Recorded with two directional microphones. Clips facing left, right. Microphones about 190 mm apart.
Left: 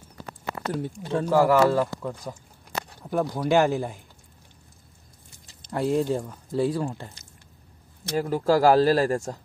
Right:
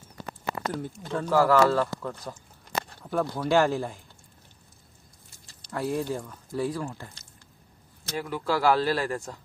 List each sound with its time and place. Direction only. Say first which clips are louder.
0.7 s speech: left 4 dB; 25° left (ahead or behind)
1.2 s speech: left 2 dB; 15° left (ahead or behind)
5.6 s speech: left 5 dB; 20° left (ahead or behind)
8.2 s speech: left 6 dB; 40° left (ahead or behind)